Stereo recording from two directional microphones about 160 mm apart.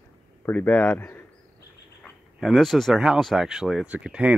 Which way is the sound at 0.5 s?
10° left (ahead or behind).